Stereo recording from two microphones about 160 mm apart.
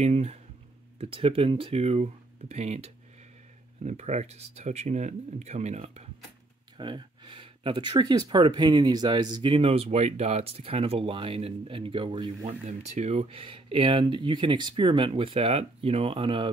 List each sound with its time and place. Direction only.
0.0 s speech: 45° right (ahead or behind)
6.8 s speech: 30° right (ahead or behind)